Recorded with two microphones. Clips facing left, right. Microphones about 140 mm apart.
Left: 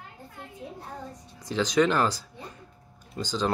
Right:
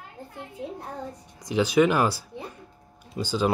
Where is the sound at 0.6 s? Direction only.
75° right (ahead or behind).